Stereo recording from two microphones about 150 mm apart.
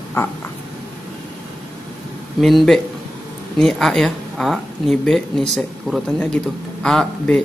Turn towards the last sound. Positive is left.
turn(degrees=5)  # may be behind; listen again after turning